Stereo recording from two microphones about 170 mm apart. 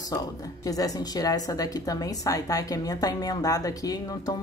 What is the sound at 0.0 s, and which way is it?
Speech, 20° left (ahead or behind).